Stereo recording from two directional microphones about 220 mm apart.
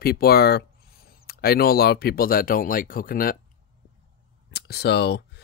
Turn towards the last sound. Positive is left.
turn(degrees=45)  # may be behind; listen again after turning